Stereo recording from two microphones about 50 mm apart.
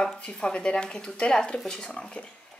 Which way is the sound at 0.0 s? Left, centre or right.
Centre.